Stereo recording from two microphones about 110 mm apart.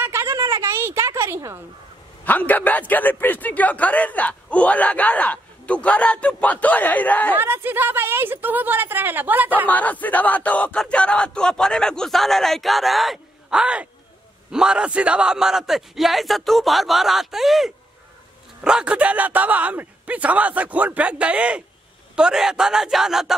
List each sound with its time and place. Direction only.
0.0 s a sound: 25° right (ahead or behind)
2.2 s a man's voice: 15° left (ahead or behind)
7.3 s a woman's voice: 20° right (ahead or behind)
9.7 s a man's voice: 15° left (ahead or behind); by 23.3 s 5° right (ahead or behind)